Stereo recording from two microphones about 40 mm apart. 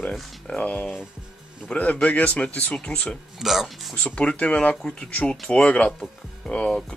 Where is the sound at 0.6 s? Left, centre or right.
Left.